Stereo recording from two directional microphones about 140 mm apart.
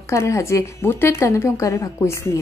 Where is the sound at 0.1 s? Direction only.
20° left (ahead or behind).